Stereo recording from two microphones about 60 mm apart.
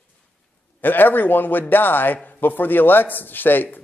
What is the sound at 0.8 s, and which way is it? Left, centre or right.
A man's voice, left.